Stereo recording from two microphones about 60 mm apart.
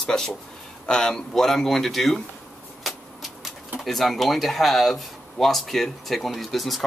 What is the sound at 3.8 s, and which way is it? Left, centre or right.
Speech, centre.